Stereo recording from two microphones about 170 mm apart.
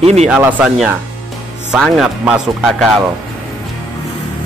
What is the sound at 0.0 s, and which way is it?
Speech, 40° right (ahead or behind).